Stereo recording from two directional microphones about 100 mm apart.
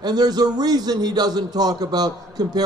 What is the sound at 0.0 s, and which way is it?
A man's voice, 45° right (ahead or behind).